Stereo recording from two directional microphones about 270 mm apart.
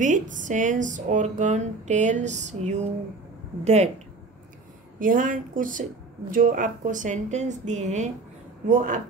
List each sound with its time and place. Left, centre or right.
0.0 s speech: right
4.9 s speech: right